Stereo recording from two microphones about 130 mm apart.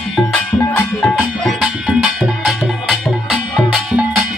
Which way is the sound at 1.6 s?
5° right (ahead or behind).